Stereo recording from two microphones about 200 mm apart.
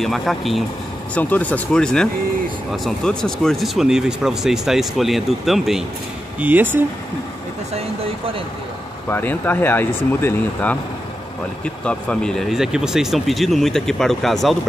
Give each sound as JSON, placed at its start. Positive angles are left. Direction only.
{"t": 0.0, "sound": "speech", "side_deg": 0}
{"t": 7.7, "sound": "a sound", "side_deg": -30}
{"t": 9.1, "sound": "speech", "side_deg": 10}